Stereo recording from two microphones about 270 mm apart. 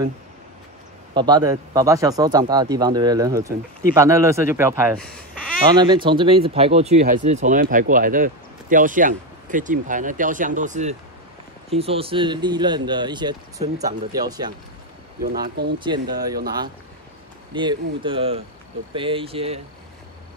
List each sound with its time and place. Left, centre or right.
1.1 s speech: centre
4.9 s speech: centre
5.8 s speech: centre
15.8 s speech: centre
17.6 s speech: centre